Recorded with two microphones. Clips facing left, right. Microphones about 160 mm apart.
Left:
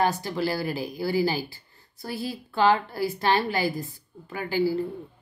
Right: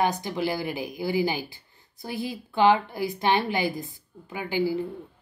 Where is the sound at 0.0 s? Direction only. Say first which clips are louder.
Left 1 dB; 15° right (ahead or behind).